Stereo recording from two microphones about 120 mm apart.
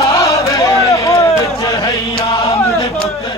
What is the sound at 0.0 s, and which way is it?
Chant, 25° left (ahead or behind).